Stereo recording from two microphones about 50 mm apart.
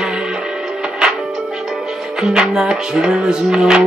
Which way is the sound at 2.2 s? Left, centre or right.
Centre.